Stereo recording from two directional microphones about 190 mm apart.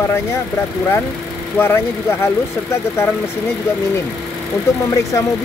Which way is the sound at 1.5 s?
10° left (ahead or behind).